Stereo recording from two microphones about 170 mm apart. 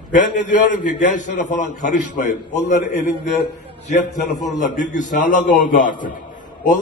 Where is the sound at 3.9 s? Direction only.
45° left (ahead or behind).